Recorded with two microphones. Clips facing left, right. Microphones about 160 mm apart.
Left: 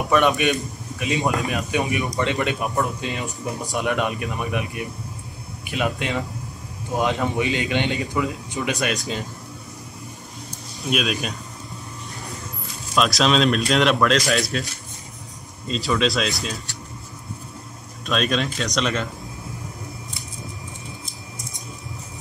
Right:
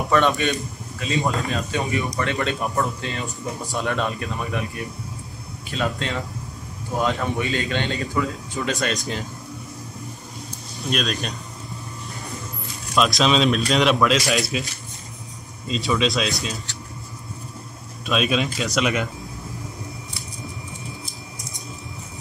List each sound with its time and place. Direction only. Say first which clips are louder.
0.1 s speech: left 1 dB; 15° left (ahead or behind)
10.9 s speech: left 1 dB; 5° left (ahead or behind)
12.9 s speech: even; centre (ahead or behind)
18.0 s speech: right 1 dB; 5° right (ahead or behind)